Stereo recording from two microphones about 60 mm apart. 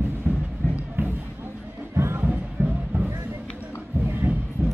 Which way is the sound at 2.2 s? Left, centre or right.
Right.